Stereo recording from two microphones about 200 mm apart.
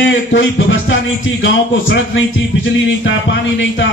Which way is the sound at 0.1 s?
70° left (ahead or behind).